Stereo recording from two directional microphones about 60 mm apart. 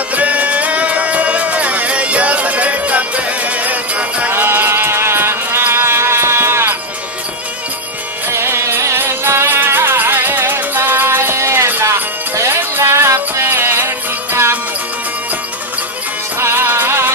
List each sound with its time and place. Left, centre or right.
0.1 s music: right
4.3 s music: right
8.3 s music: right
16.3 s music: right